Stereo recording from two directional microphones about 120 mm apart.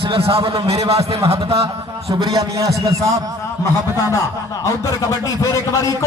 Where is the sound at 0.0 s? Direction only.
50° right (ahead or behind).